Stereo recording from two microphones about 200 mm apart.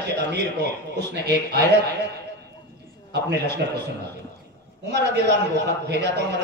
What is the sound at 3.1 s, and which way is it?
A man's voice, 55° right (ahead or behind).